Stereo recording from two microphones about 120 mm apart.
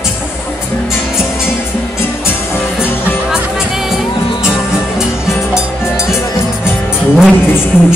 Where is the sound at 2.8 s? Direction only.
15° left (ahead or behind).